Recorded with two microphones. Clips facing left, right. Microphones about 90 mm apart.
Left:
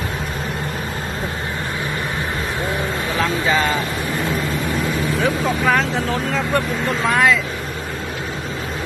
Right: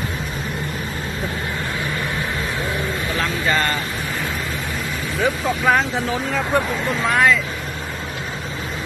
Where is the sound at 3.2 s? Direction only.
5° left (ahead or behind).